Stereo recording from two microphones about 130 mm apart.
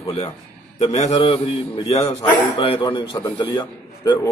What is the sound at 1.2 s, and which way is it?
Speech, 40° left (ahead or behind).